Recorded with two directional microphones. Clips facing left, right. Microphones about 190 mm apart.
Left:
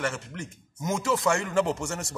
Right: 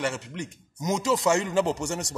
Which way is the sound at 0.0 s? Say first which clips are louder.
Right 2 dB; 20° right (ahead or behind).